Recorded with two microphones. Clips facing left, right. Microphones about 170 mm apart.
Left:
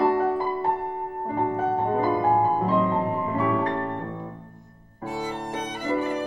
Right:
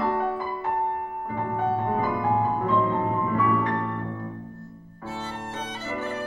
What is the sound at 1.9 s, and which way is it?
Music, 30° left (ahead or behind).